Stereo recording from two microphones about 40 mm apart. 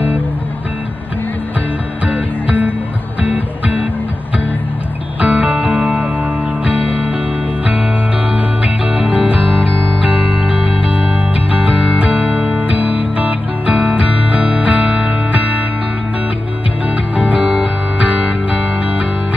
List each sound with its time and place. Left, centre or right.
2.0 s music: right
5.2 s music: right
8.3 s music: right
9.4 s music: right
16.9 s music: right